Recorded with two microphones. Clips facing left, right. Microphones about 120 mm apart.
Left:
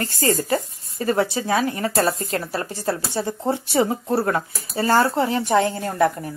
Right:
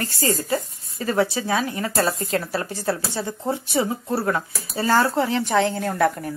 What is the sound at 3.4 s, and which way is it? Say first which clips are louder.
Speech: left 3 dB; 30° left (ahead or behind).